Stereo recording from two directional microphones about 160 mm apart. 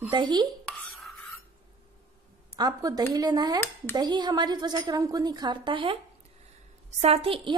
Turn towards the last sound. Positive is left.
turn(degrees=-35)  # may be behind; listen again after turning